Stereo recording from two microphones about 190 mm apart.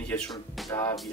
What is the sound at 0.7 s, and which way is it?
Speech, 15° left (ahead or behind).